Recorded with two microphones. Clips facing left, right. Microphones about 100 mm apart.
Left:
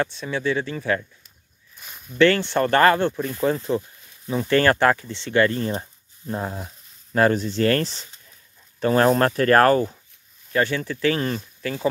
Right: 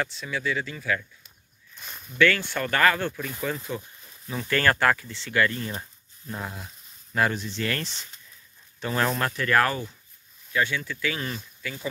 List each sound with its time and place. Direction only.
0.0 s speech: 30° left (ahead or behind)
1.8 s a sound: 5° left (ahead or behind)
2.1 s speech: 30° left (ahead or behind)